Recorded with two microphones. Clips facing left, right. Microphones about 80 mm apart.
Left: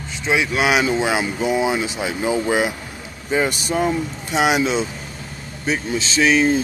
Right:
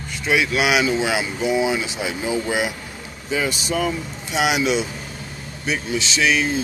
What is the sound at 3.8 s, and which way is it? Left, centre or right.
Speech, left.